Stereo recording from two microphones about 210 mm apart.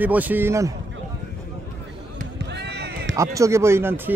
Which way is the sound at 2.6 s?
55° right (ahead or behind).